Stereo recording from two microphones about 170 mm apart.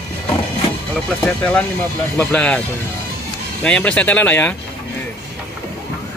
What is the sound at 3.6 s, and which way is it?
Speech, 5° left (ahead or behind).